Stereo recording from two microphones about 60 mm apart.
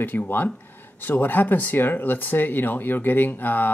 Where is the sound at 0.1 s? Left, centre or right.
Left.